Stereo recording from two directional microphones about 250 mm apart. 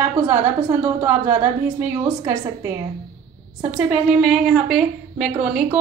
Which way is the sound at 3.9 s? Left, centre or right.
Centre.